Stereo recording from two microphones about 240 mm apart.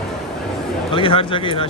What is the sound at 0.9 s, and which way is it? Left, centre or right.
Speech, left.